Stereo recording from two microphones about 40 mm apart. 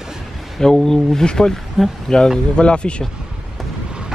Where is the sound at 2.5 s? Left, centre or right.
Left.